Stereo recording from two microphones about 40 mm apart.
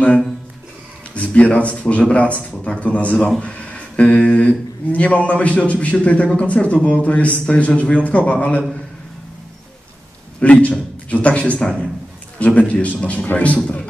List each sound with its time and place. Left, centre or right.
1.1 s a man's voice: left
10.4 s a man's voice: left
13.6 s a man's voice: left